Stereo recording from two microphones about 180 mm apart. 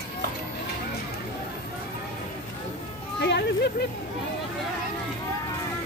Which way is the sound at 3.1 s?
70° left (ahead or behind).